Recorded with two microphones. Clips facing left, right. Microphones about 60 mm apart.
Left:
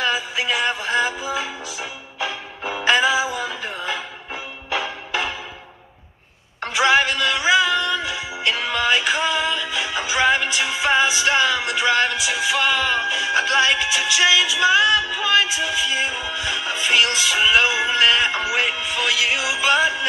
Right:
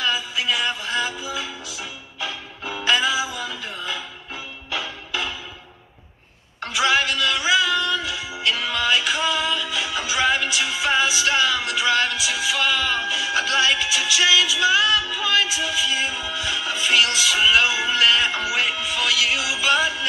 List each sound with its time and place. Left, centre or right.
0.0 s music: left
6.6 s music: left